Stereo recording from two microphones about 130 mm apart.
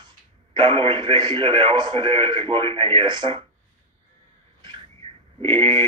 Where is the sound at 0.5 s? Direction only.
40° right (ahead or behind).